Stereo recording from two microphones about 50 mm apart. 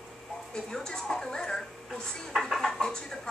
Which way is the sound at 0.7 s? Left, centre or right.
Centre.